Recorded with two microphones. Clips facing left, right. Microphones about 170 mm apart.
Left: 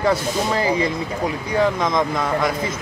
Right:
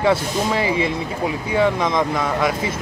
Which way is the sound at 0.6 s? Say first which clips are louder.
Left 1 dB; 40° left (ahead or behind).